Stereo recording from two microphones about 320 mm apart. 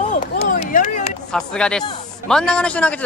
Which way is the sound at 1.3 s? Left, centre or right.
Centre.